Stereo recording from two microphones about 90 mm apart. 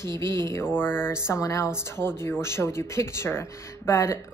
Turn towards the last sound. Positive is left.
turn(degrees=30)  # may be behind; listen again after turning